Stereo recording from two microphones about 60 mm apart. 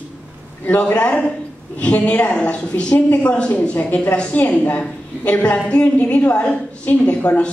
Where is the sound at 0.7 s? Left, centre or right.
Left.